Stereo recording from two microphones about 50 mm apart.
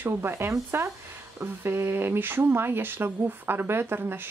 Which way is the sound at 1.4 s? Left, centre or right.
Right.